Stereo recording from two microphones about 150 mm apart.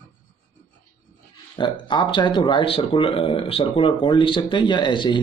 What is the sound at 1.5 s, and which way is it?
Speech, 30° left (ahead or behind).